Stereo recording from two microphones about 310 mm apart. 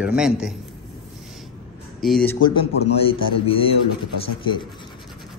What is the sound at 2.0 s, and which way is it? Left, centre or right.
Speech, centre.